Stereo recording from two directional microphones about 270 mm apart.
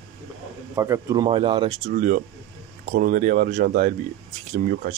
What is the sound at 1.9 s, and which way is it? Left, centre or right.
Speech, right.